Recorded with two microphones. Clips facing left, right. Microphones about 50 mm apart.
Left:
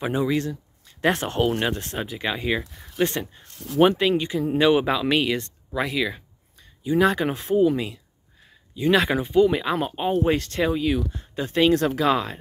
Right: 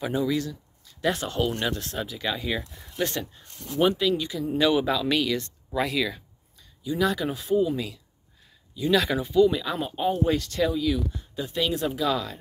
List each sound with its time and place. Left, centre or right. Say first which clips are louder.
0.0 s speech: left 3 dB; left
6.6 s speech: left 5 dB; left
9.9 s speech: even; left
11.8 s speech: left 4 dB; left
12.1 s speech: left 5 dB; left